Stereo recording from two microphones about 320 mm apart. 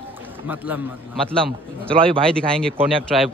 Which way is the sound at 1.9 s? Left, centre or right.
Centre.